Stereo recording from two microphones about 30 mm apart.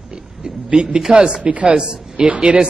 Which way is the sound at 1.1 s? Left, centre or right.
Right.